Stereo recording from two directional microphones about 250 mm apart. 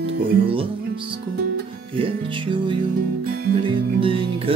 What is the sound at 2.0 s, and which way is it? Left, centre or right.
Music, centre.